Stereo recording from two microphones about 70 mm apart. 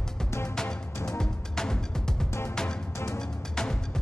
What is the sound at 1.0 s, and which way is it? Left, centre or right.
Music, centre.